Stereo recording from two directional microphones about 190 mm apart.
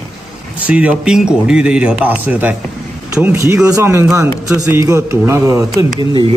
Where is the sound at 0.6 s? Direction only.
5° right (ahead or behind).